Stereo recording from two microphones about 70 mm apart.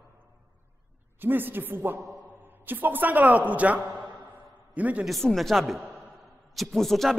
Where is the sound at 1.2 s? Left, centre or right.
Right.